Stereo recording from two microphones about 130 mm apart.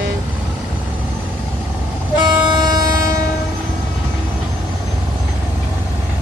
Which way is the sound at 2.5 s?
30° right (ahead or behind).